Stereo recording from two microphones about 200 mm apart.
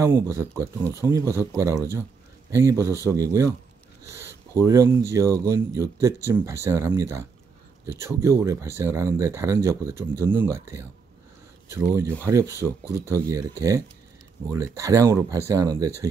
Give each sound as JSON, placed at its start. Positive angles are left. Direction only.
{"t": 0.0, "sound": "speech", "side_deg": -15}